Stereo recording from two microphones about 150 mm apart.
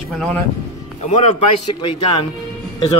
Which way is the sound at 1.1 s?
35° left (ahead or behind).